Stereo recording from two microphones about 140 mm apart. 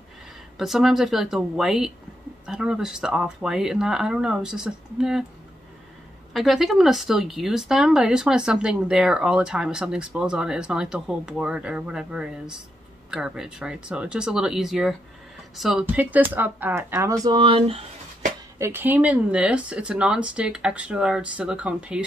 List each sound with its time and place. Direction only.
0.6 s speech: centre (ahead or behind)
6.3 s speech: centre (ahead or behind); by 18.3 s 45° right (ahead or behind)
18.6 s speech: 15° right (ahead or behind)